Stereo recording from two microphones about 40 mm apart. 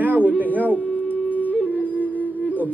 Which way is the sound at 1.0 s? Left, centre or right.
Left.